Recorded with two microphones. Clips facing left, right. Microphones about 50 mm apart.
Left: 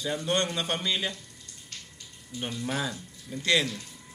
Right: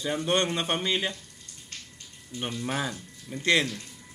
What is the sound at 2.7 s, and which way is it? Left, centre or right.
Speech, centre.